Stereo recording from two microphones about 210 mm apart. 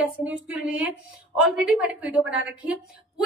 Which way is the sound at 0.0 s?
5° right (ahead or behind).